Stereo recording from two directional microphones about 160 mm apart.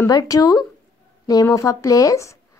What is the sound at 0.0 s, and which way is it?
Speech, 20° left (ahead or behind).